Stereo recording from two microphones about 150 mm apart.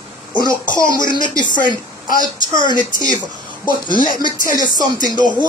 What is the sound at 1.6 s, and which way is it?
Speech, 65° left (ahead or behind).